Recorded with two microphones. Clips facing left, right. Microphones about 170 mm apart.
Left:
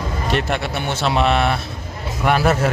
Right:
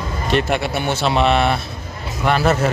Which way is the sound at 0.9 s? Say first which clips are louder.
Right 1 dB; centre (ahead or behind).